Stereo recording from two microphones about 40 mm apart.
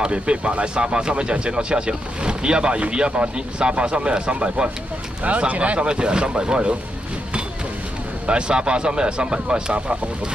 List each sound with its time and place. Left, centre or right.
0.0 s speech: right
8.3 s speech: right